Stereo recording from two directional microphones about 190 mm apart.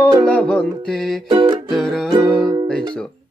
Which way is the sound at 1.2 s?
25° right (ahead or behind).